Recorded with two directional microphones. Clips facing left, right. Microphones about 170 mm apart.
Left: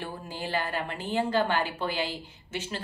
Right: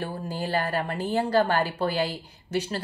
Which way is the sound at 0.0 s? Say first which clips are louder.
Right 5 dB; 40° right (ahead or behind).